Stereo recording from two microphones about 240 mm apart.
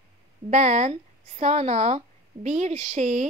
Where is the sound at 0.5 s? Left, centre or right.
Right.